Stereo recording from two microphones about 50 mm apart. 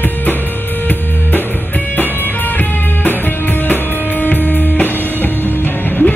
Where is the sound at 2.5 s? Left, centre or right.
Left.